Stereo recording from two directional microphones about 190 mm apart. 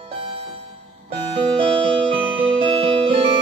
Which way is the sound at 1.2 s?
30° right (ahead or behind).